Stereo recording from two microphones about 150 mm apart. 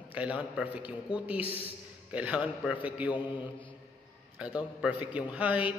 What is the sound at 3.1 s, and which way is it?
Mantra, 30° left (ahead or behind).